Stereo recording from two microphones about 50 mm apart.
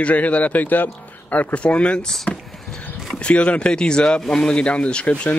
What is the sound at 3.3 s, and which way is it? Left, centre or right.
Speech, left.